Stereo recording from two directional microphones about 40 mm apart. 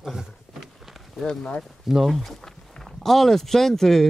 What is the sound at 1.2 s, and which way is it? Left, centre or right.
Speech, centre.